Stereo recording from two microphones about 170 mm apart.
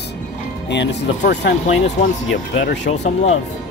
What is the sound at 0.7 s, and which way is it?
Speech, 90° left.